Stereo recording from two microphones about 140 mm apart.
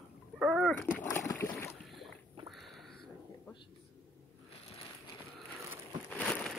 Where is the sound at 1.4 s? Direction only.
15° left (ahead or behind).